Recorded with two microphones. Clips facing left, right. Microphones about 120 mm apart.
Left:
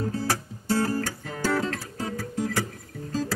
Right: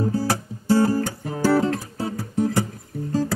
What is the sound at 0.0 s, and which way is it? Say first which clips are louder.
Music: right 5 dB; 30° right (ahead or behind).